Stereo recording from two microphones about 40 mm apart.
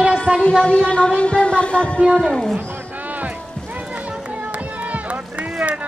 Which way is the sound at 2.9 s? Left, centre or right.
Right.